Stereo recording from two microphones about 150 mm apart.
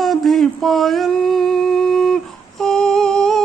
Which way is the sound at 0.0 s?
Centre (ahead or behind).